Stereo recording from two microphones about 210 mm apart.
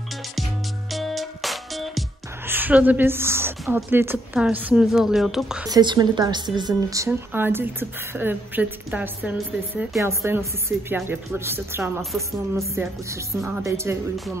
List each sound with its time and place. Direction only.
0.9 s music: centre (ahead or behind)
2.4 s a woman's voice: 10° right (ahead or behind)
5.7 s a woman's voice: 20° right (ahead or behind)
12.0 s a woman's voice: centre (ahead or behind)
12.5 s a woman's voice: 15° right (ahead or behind)